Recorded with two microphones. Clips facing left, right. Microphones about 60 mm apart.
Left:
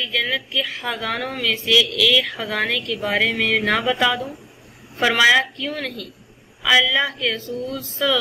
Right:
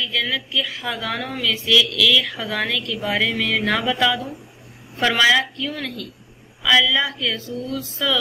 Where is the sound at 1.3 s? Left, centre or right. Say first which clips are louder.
Even; left.